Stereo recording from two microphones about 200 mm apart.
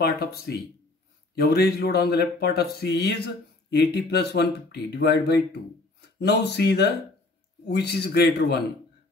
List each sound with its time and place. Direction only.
0.0 s a man's voice: 50° left (ahead or behind)